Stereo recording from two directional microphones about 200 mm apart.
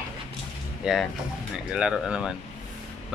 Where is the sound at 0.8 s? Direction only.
5° right (ahead or behind).